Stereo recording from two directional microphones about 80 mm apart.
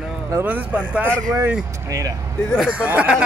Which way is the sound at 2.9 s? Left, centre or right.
Centre.